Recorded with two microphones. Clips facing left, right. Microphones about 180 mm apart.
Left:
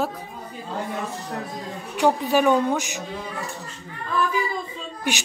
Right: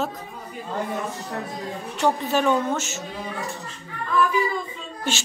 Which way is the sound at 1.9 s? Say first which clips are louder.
Left 3 dB; 10° left (ahead or behind).